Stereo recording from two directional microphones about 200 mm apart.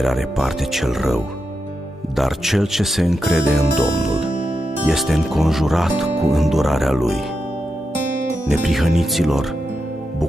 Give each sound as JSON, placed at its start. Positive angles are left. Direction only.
{"t": 0.0, "sound": "speech", "side_deg": 0}
{"t": 8.5, "sound": "speech", "side_deg": 0}